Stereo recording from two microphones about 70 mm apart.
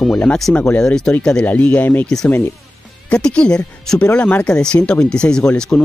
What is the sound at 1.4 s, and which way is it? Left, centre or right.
Speech, left.